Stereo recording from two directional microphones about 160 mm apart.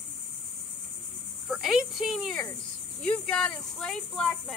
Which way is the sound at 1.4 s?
5° right (ahead or behind).